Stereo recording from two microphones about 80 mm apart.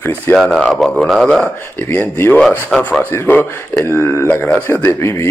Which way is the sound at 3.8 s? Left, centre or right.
Left.